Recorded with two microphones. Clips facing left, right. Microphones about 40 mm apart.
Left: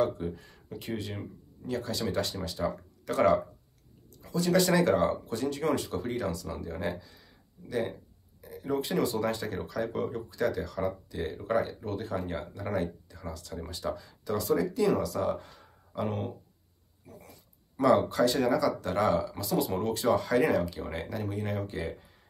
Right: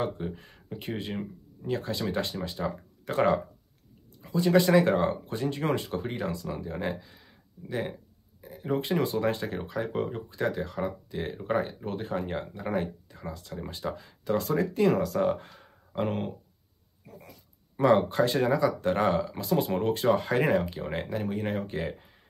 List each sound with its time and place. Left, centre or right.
0.0 s speech: right
17.0 s dog: right
17.7 s speech: right